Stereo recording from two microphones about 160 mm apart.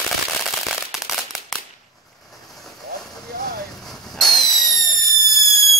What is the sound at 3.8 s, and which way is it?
Fireworks, centre (ahead or behind).